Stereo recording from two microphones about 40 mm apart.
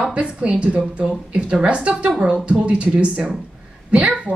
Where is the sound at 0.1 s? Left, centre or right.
Right.